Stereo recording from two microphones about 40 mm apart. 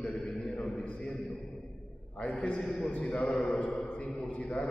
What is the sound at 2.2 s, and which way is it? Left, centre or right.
Speech, left.